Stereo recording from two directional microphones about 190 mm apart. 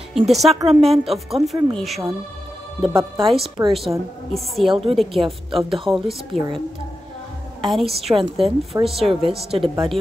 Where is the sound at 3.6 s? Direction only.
15° right (ahead or behind).